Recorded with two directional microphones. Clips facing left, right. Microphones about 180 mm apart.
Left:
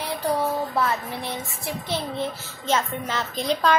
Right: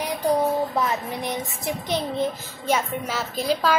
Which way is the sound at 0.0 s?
15° right (ahead or behind).